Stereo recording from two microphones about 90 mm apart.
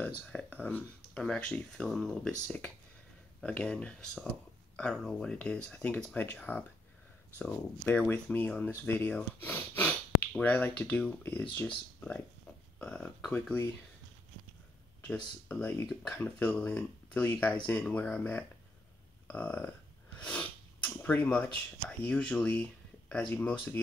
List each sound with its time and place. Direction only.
0.3 s speech: 10° left (ahead or behind)
8.1 s speech: 20° left (ahead or behind)
15.4 s speech: 20° left (ahead or behind)